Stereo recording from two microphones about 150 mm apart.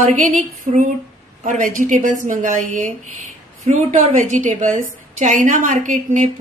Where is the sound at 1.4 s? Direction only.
60° right (ahead or behind).